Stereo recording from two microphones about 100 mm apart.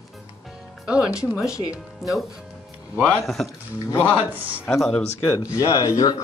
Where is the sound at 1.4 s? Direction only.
35° left (ahead or behind).